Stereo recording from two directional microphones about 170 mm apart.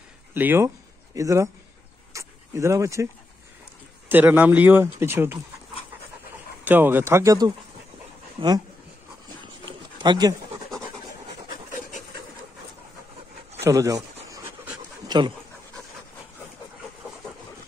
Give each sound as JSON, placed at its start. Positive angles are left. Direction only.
{"t": 0.3, "sound": "speech", "side_deg": -10}
{"t": 2.1, "sound": "dog", "side_deg": -15}
{"t": 4.1, "sound": "speech", "side_deg": -10}
{"t": 6.6, "sound": "speech", "side_deg": -10}
{"t": 9.4, "sound": "a sound", "side_deg": -30}
{"t": 13.7, "sound": "speech", "side_deg": -20}
{"t": 14.3, "sound": "pant", "side_deg": -15}
{"t": 15.0, "sound": "speech", "side_deg": -25}